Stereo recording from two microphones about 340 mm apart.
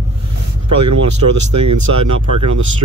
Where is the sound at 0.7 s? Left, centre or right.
Right.